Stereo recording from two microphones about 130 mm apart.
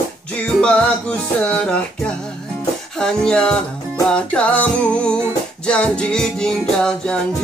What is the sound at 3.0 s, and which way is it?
Music, 5° left (ahead or behind).